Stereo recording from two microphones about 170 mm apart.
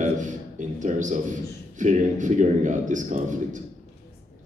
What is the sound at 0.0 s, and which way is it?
A man's voice, 45° right (ahead or behind).